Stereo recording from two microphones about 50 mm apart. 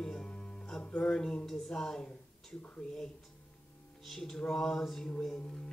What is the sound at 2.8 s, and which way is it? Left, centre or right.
Music, centre.